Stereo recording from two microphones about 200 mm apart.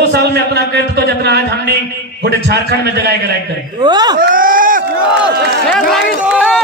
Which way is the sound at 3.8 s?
20° right (ahead or behind).